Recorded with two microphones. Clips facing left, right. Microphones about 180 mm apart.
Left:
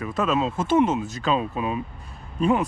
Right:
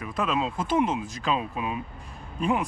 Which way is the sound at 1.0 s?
30° left (ahead or behind).